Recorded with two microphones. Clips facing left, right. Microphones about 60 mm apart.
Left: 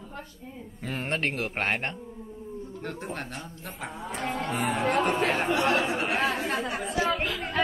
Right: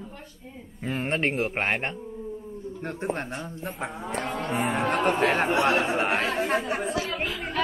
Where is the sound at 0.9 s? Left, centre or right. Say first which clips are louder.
Right 3 dB; centre.